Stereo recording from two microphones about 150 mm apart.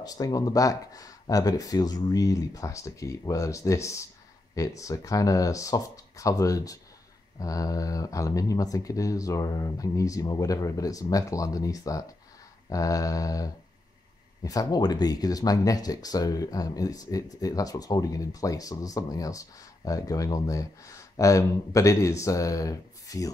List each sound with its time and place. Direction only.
0.0 s speech: 25° left (ahead or behind)